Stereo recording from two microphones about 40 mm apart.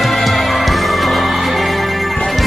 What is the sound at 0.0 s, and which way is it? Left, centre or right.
Music, centre.